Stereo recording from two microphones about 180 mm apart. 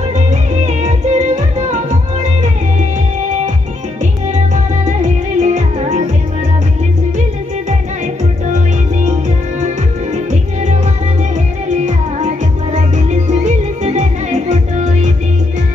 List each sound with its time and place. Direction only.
0.3 s music: 40° right (ahead or behind)
5.0 s music: 45° right (ahead or behind)
10.1 s music: 40° right (ahead or behind)